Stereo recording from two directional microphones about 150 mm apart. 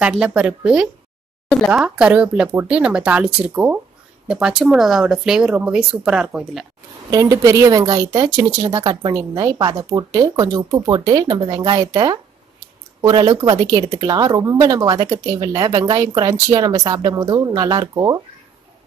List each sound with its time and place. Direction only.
0.2 s speech: 10° right (ahead or behind)
7.1 s speech: 25° right (ahead or behind)